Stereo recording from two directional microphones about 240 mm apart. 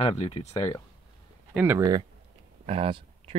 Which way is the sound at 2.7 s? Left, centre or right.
Right.